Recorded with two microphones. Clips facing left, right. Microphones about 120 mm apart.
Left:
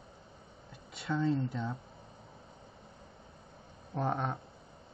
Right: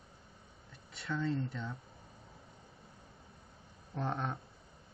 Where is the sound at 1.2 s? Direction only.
5° left (ahead or behind).